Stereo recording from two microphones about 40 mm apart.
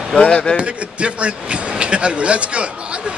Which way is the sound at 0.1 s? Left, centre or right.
Left.